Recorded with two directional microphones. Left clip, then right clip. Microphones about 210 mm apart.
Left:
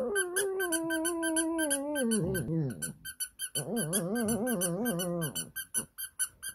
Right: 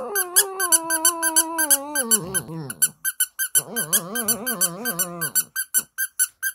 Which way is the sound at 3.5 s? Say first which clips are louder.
Right 6 dB; 55° right (ahead or behind).